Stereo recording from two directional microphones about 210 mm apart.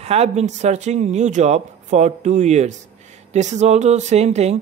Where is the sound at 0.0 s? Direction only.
30° right (ahead or behind).